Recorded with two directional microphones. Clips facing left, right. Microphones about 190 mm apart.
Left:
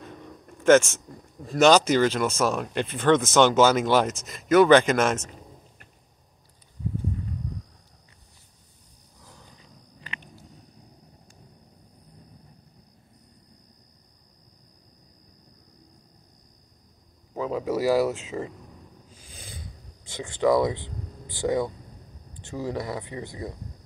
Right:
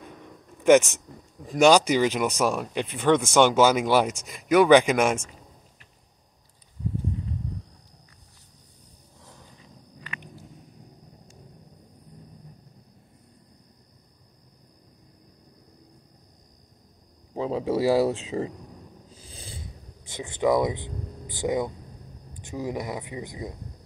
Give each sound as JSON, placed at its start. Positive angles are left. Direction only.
{"t": 0.0, "sound": "speech", "side_deg": -15}
{"t": 17.4, "sound": "a sound", "side_deg": -30}
{"t": 22.4, "sound": "speech", "side_deg": -15}